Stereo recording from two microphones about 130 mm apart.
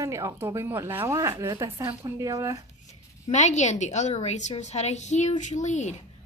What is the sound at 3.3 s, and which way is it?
A woman's voice, 65° left (ahead or behind).